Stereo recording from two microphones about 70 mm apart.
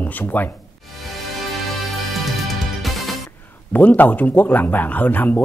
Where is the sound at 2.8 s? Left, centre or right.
Centre.